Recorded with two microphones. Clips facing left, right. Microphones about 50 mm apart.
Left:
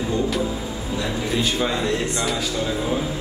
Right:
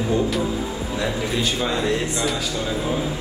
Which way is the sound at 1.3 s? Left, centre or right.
Centre.